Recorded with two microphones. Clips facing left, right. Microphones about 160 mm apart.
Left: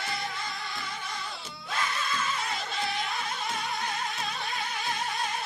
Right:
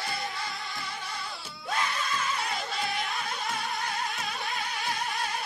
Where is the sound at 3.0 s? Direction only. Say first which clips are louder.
Even; centre (ahead or behind).